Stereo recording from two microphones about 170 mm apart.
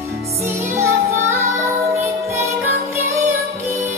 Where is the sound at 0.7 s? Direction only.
15° right (ahead or behind).